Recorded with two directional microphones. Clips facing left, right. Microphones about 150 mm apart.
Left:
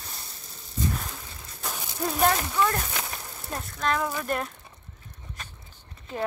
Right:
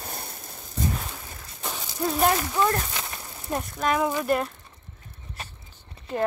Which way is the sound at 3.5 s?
10° right (ahead or behind).